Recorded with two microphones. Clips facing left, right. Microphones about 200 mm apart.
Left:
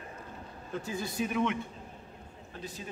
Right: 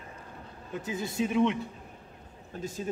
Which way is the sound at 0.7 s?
20° right (ahead or behind).